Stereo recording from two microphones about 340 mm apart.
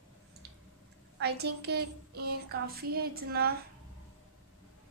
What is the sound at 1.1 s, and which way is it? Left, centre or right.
A woman's voice, right.